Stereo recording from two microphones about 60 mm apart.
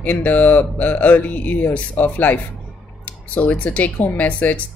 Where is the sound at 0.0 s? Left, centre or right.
Left.